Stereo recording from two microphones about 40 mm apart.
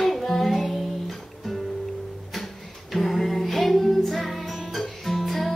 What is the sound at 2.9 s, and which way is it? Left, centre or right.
Music, centre.